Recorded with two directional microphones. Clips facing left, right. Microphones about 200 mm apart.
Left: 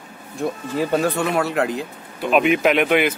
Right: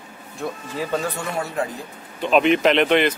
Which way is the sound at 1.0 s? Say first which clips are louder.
Left 7 dB; 70° left (ahead or behind).